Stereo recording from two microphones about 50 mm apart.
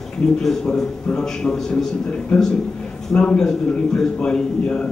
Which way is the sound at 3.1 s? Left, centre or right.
Centre.